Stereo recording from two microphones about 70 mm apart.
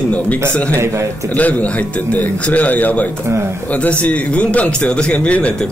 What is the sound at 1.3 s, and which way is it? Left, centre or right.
A man's voice, left.